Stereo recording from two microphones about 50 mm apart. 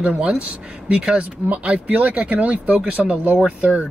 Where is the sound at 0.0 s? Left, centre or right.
Right.